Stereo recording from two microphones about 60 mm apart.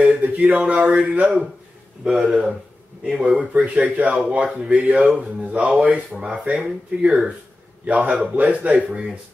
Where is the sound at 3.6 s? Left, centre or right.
Right.